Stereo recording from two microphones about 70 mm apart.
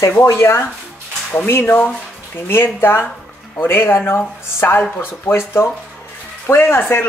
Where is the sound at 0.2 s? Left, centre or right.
Left.